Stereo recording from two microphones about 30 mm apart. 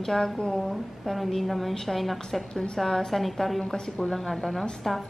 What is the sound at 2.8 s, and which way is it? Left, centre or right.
Speech, centre.